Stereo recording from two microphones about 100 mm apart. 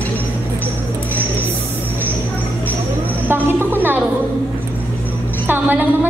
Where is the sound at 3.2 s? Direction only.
20° right (ahead or behind).